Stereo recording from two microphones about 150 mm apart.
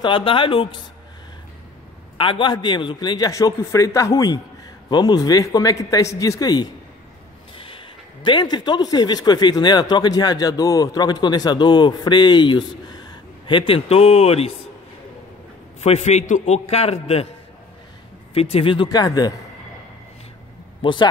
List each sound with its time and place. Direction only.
0.0 s speech: 35° left (ahead or behind)
2.1 s a man's voice: 35° left (ahead or behind)
15.8 s a man's voice: 45° left (ahead or behind)
18.3 s speech: 40° left (ahead or behind)
20.8 s speech: 30° left (ahead or behind)